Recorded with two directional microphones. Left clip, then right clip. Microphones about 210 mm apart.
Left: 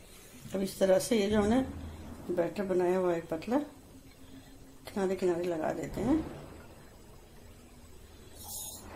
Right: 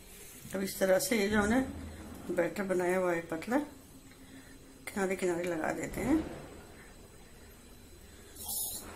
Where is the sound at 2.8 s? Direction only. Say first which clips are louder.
Left 2 dB; 20° left (ahead or behind).